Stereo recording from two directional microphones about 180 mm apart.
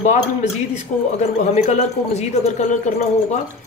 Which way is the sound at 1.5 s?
40° left (ahead or behind).